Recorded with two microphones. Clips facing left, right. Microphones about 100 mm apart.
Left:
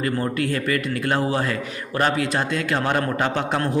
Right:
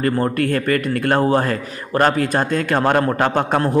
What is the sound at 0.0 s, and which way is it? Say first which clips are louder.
A man's voice: right 5 dB; 50° right (ahead or behind).